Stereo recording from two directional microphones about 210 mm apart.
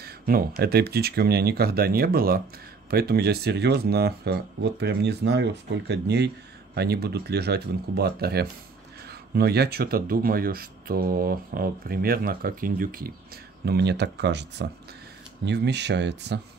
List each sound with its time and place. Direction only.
0.6 s speech: 50° right (ahead or behind)